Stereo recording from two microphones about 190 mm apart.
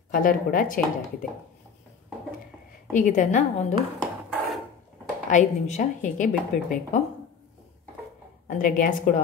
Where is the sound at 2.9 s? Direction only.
40° left (ahead or behind).